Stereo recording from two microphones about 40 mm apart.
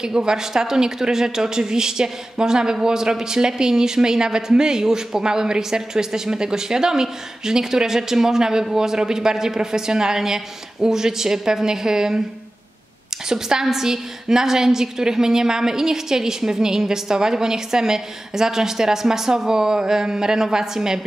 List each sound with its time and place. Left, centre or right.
0.0 s speech: centre
13.3 s speech: centre